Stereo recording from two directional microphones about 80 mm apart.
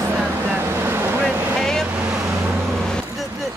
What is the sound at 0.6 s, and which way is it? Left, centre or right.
Vehicle, right.